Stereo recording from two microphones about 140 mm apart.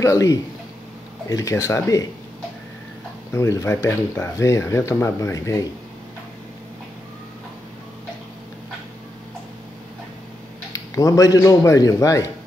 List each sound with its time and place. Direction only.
0.0 s speech: 25° left (ahead or behind)
3.3 s speech: 20° left (ahead or behind)
10.7 s speech: 25° left (ahead or behind)